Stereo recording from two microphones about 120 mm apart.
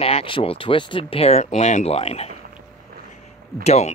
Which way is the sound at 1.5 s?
70° left (ahead or behind).